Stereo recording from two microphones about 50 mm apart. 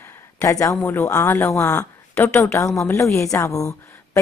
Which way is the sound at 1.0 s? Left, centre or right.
Left.